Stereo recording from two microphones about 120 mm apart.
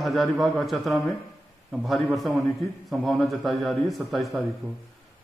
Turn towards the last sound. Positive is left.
turn(degrees=0)  # may be behind; listen again after turning